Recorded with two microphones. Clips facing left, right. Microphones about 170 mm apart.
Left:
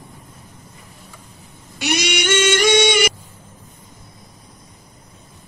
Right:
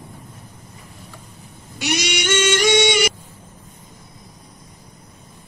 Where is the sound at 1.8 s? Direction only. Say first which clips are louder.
Left 2 dB; 55° left (ahead or behind).